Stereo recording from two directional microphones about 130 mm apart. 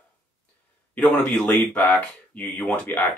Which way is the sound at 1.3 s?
5° left (ahead or behind).